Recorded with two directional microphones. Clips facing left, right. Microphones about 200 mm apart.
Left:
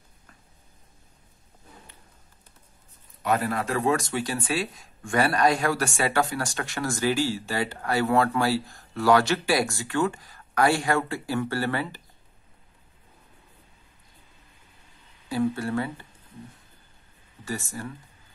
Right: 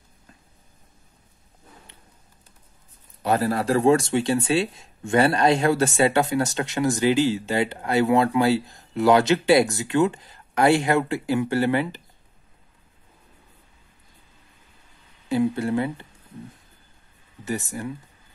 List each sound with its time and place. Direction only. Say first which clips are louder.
3.2 s speech: right 3 dB; 35° right (ahead or behind); by 12.0 s 15° right (ahead or behind)
15.2 s speech: right 4 dB; 20° right (ahead or behind)
17.5 s speech: right 5 dB; 20° right (ahead or behind)